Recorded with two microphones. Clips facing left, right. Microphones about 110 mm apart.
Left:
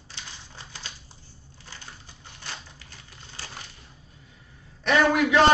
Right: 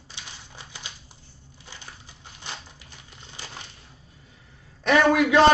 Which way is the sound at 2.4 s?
20° right (ahead or behind).